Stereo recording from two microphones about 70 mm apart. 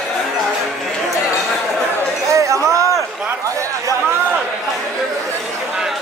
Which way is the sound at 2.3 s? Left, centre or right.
Right.